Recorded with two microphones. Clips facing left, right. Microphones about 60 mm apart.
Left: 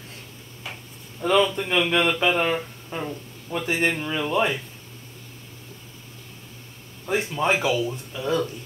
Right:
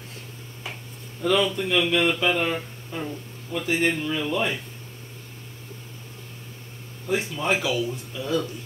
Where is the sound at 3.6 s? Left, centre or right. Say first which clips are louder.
Right 1 dB; left.